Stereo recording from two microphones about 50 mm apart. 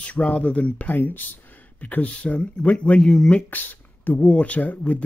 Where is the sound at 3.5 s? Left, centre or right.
Left.